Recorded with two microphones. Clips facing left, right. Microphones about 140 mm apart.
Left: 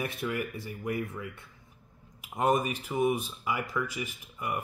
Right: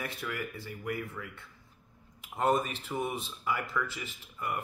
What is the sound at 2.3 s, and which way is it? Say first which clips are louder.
Speech: left 2 dB; 10° left (ahead or behind).